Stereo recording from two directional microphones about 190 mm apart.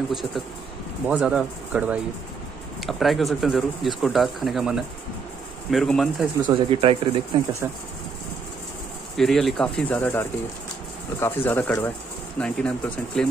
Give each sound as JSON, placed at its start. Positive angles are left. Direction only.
{"t": 0.1, "sound": "speech", "side_deg": 0}
{"t": 6.4, "sound": "speech", "side_deg": -30}
{"t": 7.6, "sound": "speech", "side_deg": -10}
{"t": 9.1, "sound": "speech", "side_deg": 0}